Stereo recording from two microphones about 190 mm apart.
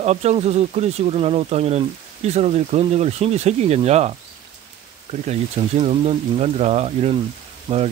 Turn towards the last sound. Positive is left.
turn(degrees=-25)  # may be behind; listen again after turning